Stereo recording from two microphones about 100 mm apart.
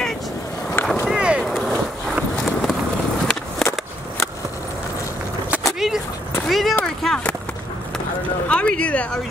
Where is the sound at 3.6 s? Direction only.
30° left (ahead or behind).